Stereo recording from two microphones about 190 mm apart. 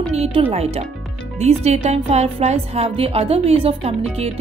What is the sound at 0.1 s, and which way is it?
Speech, 30° right (ahead or behind).